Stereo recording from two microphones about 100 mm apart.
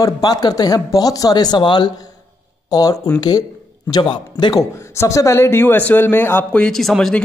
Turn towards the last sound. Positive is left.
turn(degrees=5)  # may be behind; listen again after turning